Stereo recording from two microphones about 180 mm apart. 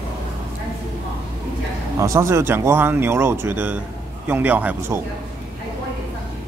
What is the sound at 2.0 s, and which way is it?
A man's voice, 15° right (ahead or behind).